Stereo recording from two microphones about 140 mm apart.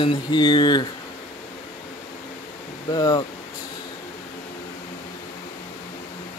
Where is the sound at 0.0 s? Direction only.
35° left (ahead or behind).